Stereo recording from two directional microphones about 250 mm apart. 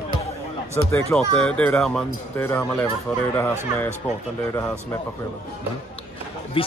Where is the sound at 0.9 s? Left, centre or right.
Centre.